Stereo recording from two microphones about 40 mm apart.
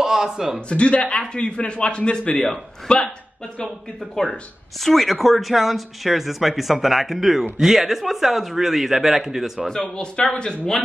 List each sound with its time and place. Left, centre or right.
0.0 s a man's voice: centre
0.7 s a man's voice: left
4.1 s speech: centre
9.7 s a man's voice: left